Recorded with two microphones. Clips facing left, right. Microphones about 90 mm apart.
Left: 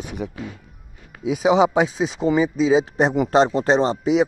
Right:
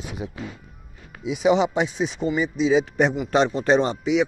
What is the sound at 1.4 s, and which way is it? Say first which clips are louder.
Speech: left 1 dB; 90° left.